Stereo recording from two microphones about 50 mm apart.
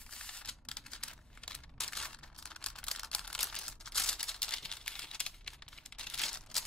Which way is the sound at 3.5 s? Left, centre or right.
Centre.